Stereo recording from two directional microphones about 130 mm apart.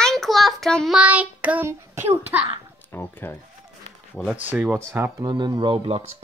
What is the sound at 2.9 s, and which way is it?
Speech, 15° left (ahead or behind).